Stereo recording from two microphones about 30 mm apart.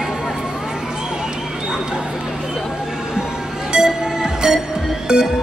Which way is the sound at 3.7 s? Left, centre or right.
Right.